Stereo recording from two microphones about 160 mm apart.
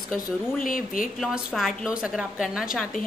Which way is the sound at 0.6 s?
60° left (ahead or behind).